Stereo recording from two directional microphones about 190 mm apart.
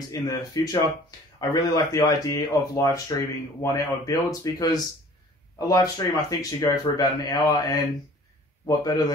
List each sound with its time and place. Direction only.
0.1 s speech: 20° left (ahead or behind)